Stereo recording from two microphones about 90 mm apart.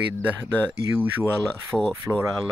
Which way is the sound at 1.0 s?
20° right (ahead or behind).